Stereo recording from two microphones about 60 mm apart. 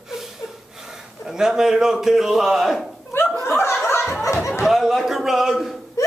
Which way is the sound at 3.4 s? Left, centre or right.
Left.